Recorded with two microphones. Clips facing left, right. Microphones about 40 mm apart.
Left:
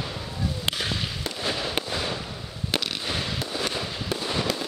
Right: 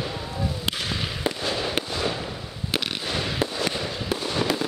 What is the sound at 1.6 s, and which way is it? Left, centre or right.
Fireworks, centre.